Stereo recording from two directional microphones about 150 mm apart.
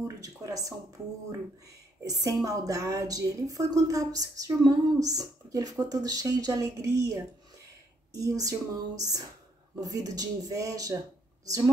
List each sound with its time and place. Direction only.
0.2 s a woman's voice: 20° right (ahead or behind)
2.0 s a woman's voice: 25° right (ahead or behind)